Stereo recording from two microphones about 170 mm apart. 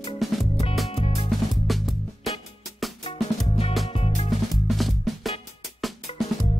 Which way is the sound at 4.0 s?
35° left (ahead or behind).